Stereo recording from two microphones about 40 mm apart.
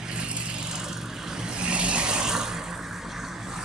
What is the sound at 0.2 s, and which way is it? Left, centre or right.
Vehicle, right.